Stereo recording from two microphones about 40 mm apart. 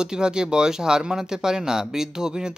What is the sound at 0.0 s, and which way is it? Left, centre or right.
Speech, centre.